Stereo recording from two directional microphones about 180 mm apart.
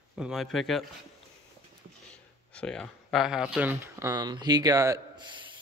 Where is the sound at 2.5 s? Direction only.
5° left (ahead or behind); by 5.2 s 20° right (ahead or behind).